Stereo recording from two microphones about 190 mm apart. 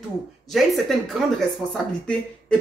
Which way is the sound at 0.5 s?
Centre (ahead or behind).